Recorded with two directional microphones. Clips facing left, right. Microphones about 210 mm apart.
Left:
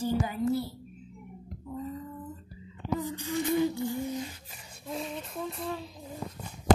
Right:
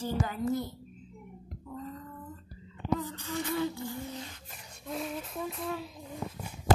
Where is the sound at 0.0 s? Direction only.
10° left (ahead or behind).